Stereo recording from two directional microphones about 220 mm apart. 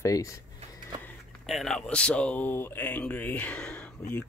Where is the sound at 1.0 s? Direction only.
Centre (ahead or behind).